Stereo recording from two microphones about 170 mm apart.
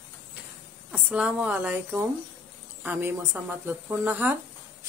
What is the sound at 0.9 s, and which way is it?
A woman's voice, 5° right (ahead or behind).